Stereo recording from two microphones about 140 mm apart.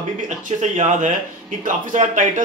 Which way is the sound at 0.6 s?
60° right (ahead or behind).